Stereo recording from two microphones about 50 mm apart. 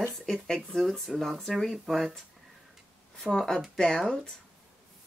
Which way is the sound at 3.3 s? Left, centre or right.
Centre.